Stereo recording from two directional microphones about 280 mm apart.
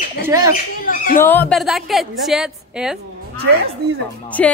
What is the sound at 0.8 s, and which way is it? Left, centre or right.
Speech, left.